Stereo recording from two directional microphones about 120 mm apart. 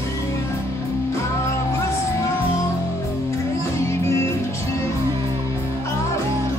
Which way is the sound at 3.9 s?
25° left (ahead or behind).